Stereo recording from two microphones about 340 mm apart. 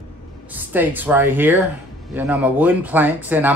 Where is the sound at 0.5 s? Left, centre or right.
Centre.